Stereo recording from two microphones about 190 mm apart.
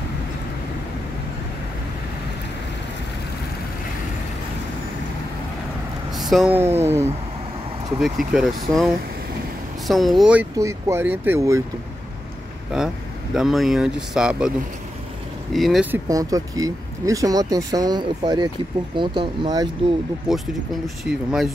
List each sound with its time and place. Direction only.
6.1 s speech: centre (ahead or behind)
8.0 s speech: centre (ahead or behind)
10.6 s speech: 15° right (ahead or behind)
12.7 s speech: 5° right (ahead or behind)
15.5 s speech: centre (ahead or behind); by 19.7 s 25° right (ahead or behind)
20.3 s speech: centre (ahead or behind)